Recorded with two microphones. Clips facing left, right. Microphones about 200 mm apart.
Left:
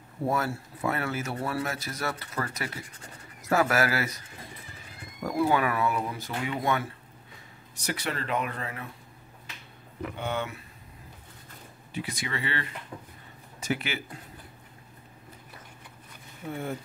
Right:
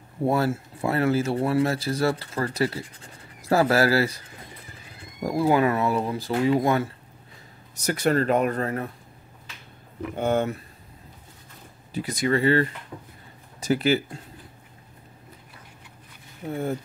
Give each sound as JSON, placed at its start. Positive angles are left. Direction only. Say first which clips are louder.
{"t": 0.2, "sound": "speech", "louder": "right 6 dB", "side_deg": -30}
{"t": 5.2, "sound": "speech", "louder": "right 5 dB", "side_deg": -30}
{"t": 7.7, "sound": "speech", "louder": "right 11 dB", "side_deg": -45}
{"t": 10.1, "sound": "speech", "louder": "right 10 dB", "side_deg": -45}
{"t": 11.9, "sound": "speech", "louder": "right 10 dB", "side_deg": -40}